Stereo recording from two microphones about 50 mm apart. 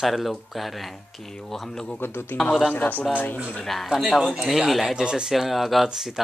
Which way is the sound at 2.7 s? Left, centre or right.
Left.